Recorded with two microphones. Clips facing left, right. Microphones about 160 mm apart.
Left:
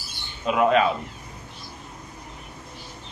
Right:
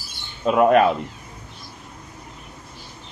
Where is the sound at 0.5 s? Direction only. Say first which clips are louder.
Right 4 dB; 50° right (ahead or behind).